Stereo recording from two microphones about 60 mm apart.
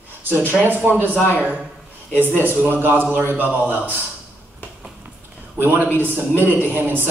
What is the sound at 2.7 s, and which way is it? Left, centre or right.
A man's voice, right.